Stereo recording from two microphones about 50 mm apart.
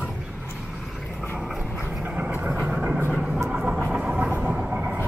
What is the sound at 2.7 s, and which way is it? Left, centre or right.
Vehicle, centre.